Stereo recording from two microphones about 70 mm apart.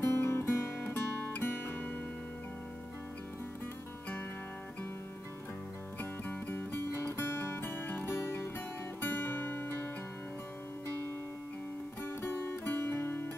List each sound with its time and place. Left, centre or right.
0.0 s music: left
6.2 s music: left
12.0 s music: left